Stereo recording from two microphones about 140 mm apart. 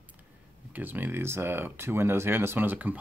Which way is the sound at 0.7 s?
15° right (ahead or behind).